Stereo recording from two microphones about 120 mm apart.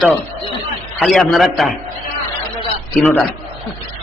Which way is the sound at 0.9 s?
Centre (ahead or behind).